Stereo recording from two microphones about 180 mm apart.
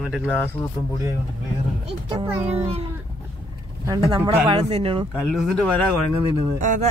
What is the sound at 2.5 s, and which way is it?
Speech, 35° right (ahead or behind).